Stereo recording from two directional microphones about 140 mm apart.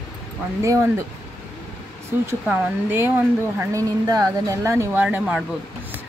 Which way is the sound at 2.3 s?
15° right (ahead or behind).